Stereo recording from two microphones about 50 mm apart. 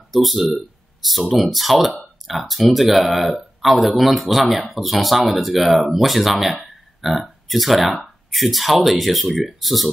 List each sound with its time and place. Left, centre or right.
0.1 s speech: centre
0.6 s a sound: centre
1.3 s speech: centre